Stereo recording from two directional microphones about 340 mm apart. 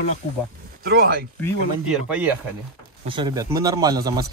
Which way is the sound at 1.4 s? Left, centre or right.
Centre.